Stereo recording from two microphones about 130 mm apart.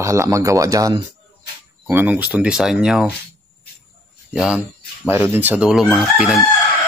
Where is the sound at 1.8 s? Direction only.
15° right (ahead or behind).